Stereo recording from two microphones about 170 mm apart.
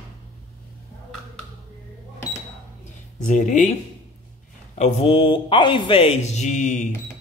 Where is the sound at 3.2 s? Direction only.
45° left (ahead or behind).